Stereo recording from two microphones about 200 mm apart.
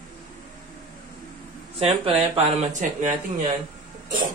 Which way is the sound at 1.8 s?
30° right (ahead or behind).